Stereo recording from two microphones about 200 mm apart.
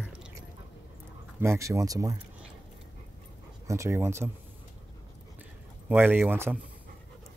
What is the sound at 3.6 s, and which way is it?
Speech, 15° right (ahead or behind).